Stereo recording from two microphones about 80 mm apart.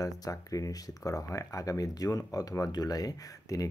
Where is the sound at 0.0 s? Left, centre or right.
Left.